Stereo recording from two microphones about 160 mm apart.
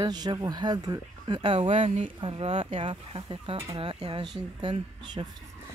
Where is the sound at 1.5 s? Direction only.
45° right (ahead or behind).